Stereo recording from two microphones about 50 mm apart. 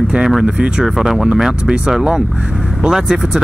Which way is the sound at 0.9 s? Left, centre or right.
Centre.